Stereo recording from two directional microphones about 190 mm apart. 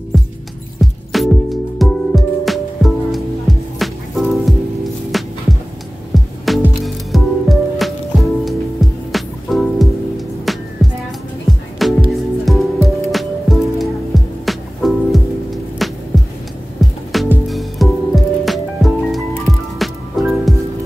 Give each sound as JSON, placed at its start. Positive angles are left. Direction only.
{"t": 0.1, "sound": "music", "side_deg": 0}
{"t": 12.1, "sound": "music", "side_deg": 0}
{"t": 16.1, "sound": "heart sounds", "side_deg": 0}
{"t": 17.1, "sound": "music", "side_deg": 0}